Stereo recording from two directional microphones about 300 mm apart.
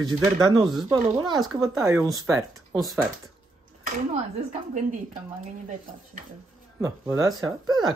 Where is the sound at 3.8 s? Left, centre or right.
Right.